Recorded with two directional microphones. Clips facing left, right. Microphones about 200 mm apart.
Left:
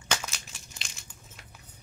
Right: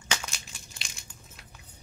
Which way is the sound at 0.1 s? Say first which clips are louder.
Left 1 dB; centre (ahead or behind).